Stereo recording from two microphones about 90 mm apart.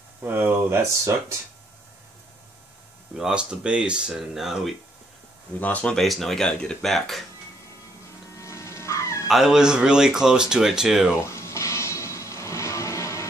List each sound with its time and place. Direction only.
0.2 s speech: 25° right (ahead or behind)
3.2 s speech: 10° right (ahead or behind)
5.6 s speech: 15° left (ahead or behind)
5.9 s speech: centre (ahead or behind)
8.4 s music: 35° left (ahead or behind)
9.3 s speech: 5° right (ahead or behind)
11.2 s vehicle: 30° left (ahead or behind)